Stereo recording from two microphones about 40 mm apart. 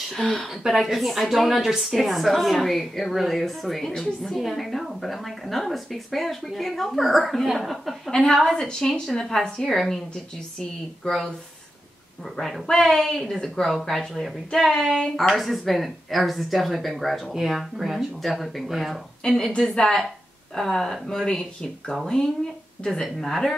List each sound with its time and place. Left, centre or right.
0.2 s speech: left
0.7 s a woman's voice: centre
8.1 s a woman's voice: centre
11.1 s a woman's voice: centre
12.4 s a woman's voice: centre
14.7 s a woman's voice: centre
15.3 s a woman's voice: centre
19.7 s speech: left
20.5 s a woman's voice: centre
23.0 s a woman's voice: centre